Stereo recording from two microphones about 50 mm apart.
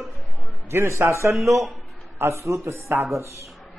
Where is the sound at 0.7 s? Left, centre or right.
Right.